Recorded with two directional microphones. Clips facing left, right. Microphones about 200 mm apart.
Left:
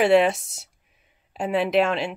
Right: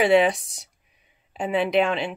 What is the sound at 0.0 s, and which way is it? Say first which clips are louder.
Speech: left 1 dB; centre (ahead or behind).